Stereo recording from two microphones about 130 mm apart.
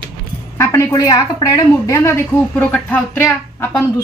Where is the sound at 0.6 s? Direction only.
20° left (ahead or behind).